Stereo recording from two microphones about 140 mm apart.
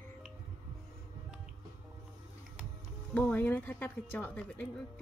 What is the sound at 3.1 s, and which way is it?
Speech, 10° left (ahead or behind).